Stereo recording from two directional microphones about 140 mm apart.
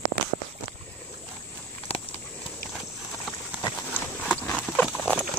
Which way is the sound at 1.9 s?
45° left (ahead or behind).